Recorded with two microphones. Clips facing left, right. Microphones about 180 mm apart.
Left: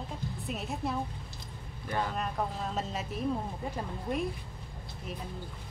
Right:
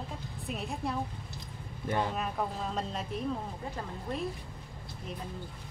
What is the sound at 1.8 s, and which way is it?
Speech, 25° right (ahead or behind).